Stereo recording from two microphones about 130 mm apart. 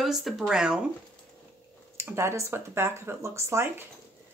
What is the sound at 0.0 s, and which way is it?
Speech, centre (ahead or behind).